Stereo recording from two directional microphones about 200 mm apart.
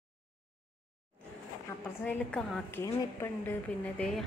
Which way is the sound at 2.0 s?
5° left (ahead or behind).